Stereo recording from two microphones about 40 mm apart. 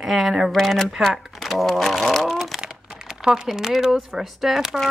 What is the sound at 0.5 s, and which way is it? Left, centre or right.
Speech, centre.